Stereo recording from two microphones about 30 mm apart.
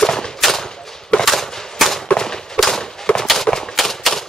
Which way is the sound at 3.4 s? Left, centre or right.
Left.